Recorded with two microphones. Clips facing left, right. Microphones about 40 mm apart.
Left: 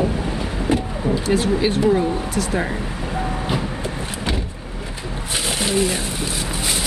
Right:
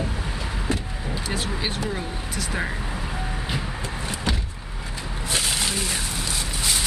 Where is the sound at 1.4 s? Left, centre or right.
Centre.